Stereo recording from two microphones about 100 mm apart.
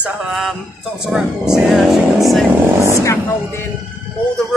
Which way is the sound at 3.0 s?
30° left (ahead or behind).